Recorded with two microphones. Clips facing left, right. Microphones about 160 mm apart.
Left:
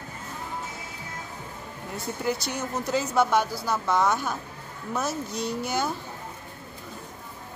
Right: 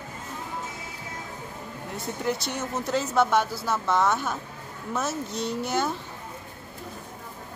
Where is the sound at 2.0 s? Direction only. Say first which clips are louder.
Even; centre (ahead or behind).